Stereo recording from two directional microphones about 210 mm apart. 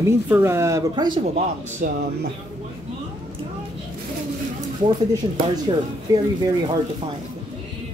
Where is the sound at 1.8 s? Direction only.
40° right (ahead or behind).